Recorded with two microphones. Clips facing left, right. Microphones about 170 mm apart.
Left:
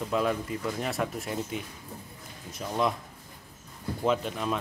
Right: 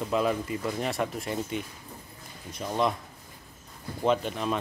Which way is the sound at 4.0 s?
Centre (ahead or behind).